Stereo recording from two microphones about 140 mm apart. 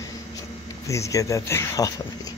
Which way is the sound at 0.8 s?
20° left (ahead or behind).